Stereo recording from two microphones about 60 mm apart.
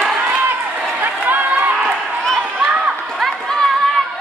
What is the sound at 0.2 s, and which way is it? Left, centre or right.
Run, centre.